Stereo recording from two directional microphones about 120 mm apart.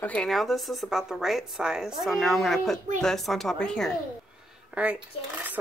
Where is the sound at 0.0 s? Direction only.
10° left (ahead or behind).